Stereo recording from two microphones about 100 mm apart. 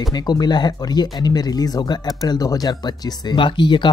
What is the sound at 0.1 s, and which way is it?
Speech, 45° left (ahead or behind).